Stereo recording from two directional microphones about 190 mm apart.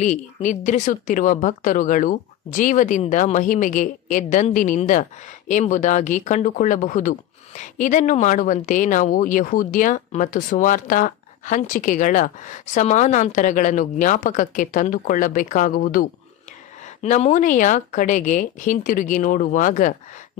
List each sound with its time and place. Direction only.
0.0 s speech: 40° left (ahead or behind)
16.8 s speech: 35° left (ahead or behind)